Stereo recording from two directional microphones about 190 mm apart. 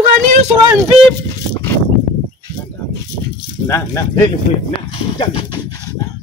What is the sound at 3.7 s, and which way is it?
Speech, 15° left (ahead or behind).